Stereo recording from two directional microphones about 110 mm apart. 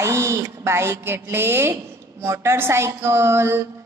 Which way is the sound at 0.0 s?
25° right (ahead or behind).